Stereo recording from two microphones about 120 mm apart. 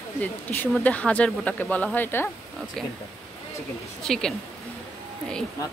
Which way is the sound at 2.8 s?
Centre (ahead or behind).